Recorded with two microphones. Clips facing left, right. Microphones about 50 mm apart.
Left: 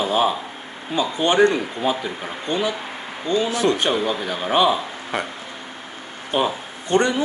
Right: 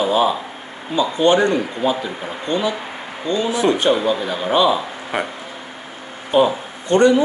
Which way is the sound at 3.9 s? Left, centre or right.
Centre.